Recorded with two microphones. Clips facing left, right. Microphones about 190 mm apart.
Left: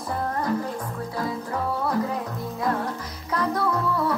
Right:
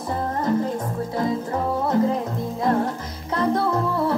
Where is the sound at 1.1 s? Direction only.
25° right (ahead or behind).